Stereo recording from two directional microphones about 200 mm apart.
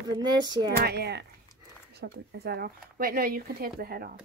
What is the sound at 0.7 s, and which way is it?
Speech, 55° right (ahead or behind).